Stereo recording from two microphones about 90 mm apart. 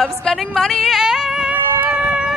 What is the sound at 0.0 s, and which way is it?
Speech, 5° left (ahead or behind).